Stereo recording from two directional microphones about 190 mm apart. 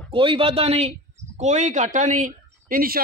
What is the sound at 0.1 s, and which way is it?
Speech, 25° right (ahead or behind).